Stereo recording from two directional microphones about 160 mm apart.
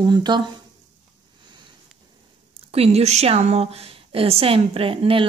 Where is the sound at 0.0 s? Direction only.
25° right (ahead or behind).